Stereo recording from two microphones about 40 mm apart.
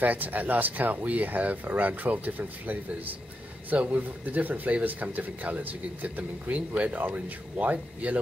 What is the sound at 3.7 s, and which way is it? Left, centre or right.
Speech, right.